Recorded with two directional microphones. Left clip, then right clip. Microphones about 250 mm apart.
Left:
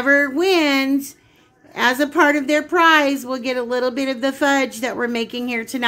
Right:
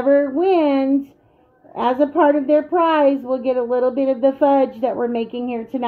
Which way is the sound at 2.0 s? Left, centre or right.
Left.